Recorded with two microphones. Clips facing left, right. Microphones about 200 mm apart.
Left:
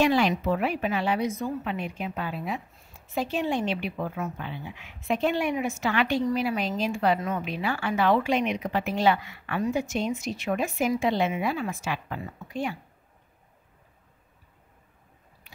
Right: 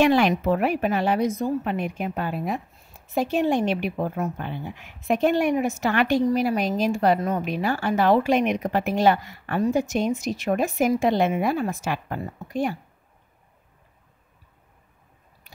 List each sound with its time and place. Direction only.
0.0 s a woman's voice: 60° right (ahead or behind); by 12.7 s 40° right (ahead or behind)